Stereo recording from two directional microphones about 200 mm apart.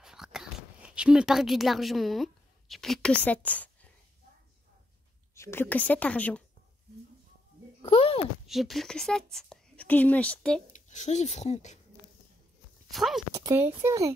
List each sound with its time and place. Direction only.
0.0 s a sound: centre (ahead or behind)
5.3 s a woman's voice: 15° left (ahead or behind)
7.8 s a child's voice: 30° left (ahead or behind)
8.5 s speech: centre (ahead or behind)
10.7 s speech: 35° left (ahead or behind)
12.9 s speech: centre (ahead or behind)
13.3 s speech: 20° right (ahead or behind)